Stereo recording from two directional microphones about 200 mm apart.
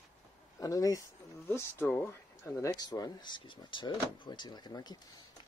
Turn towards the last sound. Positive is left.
turn(degrees=20)  # may be behind; listen again after turning